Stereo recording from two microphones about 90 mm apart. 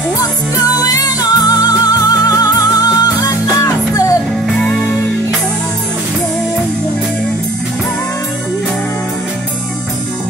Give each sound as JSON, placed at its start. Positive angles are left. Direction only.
{"t": 0.2, "sound": "music", "side_deg": 40}
{"t": 4.6, "sound": "music", "side_deg": 10}